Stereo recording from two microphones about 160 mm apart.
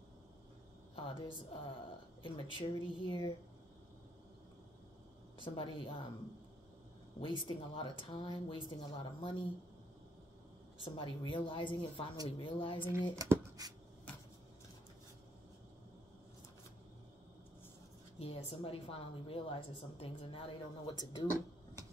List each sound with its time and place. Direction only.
0.9 s a woman's voice: 35° left (ahead or behind)
5.4 s a woman's voice: 30° left (ahead or behind)
7.2 s a woman's voice: 30° left (ahead or behind)
10.8 s a woman's voice: 30° left (ahead or behind)
13.1 s speech: 20° right (ahead or behind)
18.2 s a woman's voice: 35° left (ahead or behind)